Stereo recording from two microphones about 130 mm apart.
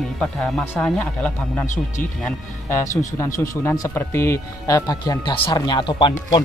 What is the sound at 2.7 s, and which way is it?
Speech, 25° left (ahead or behind).